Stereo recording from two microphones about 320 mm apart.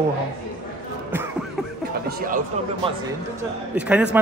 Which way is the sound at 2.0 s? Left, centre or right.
Right.